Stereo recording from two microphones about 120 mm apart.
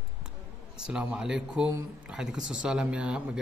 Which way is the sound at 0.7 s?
5° right (ahead or behind).